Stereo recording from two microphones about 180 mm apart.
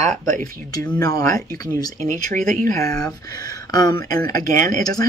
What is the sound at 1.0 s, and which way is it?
Speech, 20° left (ahead or behind).